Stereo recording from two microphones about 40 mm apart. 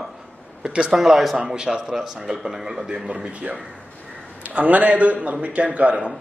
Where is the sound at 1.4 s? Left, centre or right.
Right.